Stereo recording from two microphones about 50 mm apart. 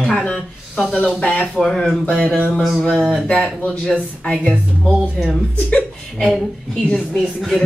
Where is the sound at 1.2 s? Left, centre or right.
Left.